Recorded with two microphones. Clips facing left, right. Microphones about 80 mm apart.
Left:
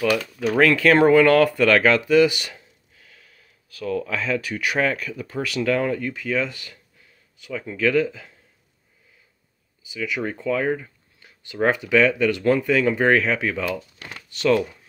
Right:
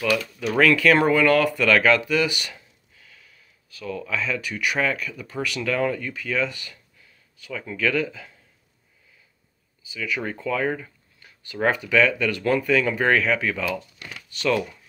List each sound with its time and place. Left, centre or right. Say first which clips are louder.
0.6 s speech: left 2 dB; left
4.0 s speech: left 2 dB; left
9.9 s speech: left 2 dB; centre
10.4 s a sound: left 3 dB; left
11.6 s speech: left 2 dB; left
13.7 s crumpling: left 1 dB; left